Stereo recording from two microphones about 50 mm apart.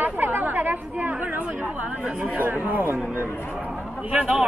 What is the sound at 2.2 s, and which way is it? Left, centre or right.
Speech, right.